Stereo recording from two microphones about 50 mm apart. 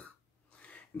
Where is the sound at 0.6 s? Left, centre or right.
Left.